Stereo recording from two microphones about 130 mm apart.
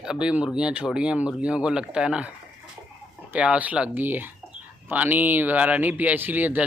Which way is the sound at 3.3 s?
10° right (ahead or behind).